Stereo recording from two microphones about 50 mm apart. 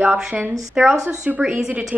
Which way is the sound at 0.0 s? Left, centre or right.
Right.